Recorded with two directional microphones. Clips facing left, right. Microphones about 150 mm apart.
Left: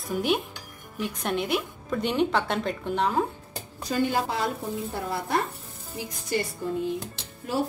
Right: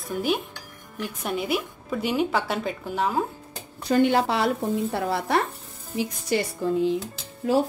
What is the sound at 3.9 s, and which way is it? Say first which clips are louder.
Speech: right 6 dB; 65° right (ahead or behind).